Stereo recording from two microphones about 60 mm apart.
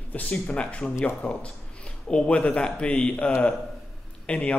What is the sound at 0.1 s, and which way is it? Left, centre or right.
A man's voice, left.